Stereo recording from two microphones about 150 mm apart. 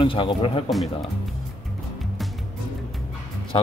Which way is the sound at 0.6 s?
Centre (ahead or behind).